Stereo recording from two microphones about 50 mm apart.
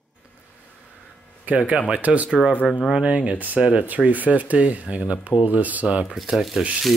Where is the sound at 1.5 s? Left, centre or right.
Right.